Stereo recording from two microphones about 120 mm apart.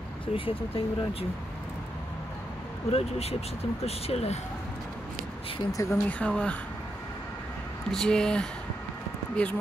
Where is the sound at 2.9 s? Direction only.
60° left (ahead or behind).